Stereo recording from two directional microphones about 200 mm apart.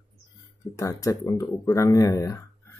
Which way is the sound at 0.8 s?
15° left (ahead or behind).